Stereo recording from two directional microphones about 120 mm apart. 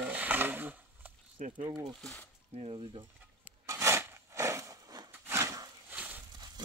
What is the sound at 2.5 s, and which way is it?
Speech, 55° right (ahead or behind).